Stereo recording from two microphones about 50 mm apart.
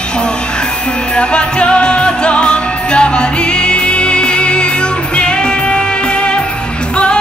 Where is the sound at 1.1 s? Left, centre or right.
Left.